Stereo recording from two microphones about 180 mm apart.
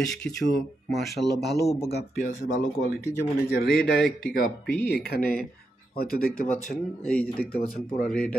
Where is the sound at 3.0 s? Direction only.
60° left (ahead or behind).